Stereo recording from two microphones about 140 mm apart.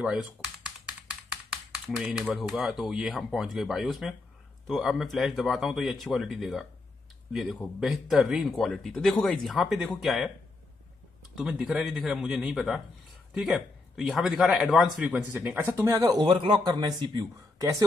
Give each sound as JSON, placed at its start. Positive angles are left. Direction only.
{"t": 0.0, "sound": "a man's voice", "side_deg": -5}
{"t": 11.3, "sound": "a man's voice", "side_deg": -5}